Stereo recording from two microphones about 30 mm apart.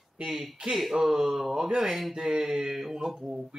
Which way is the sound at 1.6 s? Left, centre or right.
Centre.